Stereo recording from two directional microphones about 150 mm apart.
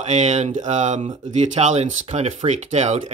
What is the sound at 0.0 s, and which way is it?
Speech, 50° right (ahead or behind).